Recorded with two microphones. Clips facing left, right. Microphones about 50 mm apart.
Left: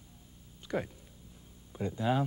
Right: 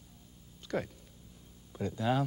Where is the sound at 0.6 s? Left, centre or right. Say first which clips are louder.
Even; centre.